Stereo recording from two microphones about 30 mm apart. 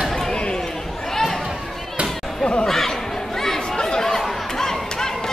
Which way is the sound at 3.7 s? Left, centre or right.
Left.